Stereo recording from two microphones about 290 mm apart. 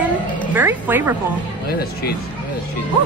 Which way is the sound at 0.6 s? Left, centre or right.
Centre.